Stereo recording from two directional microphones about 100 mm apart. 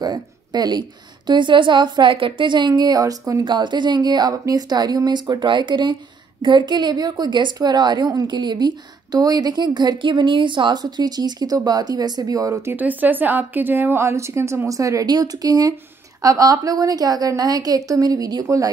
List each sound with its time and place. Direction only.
0.0 s a woman's voice: 45° right (ahead or behind)
3.4 s a woman's voice: 50° right (ahead or behind); by 12.7 s 35° right (ahead or behind)
12.7 s a woman's voice: 15° right (ahead or behind); by 18.7 s 35° right (ahead or behind)